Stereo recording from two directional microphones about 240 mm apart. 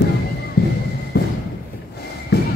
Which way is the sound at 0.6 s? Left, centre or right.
Left.